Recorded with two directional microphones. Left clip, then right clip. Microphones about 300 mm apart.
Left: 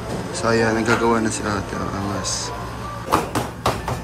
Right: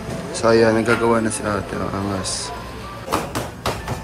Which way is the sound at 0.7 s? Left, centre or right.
Centre.